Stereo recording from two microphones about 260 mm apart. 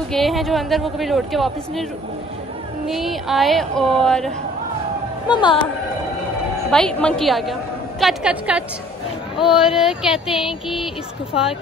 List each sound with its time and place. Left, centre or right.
0.1 s speech: centre
2.9 s speech: centre
5.3 s speech: centre
6.7 s speech: centre